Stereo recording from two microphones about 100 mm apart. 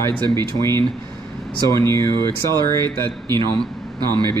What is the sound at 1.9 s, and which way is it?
Speech, 45° right (ahead or behind).